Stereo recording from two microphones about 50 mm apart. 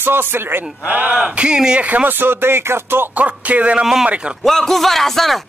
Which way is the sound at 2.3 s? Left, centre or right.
Right.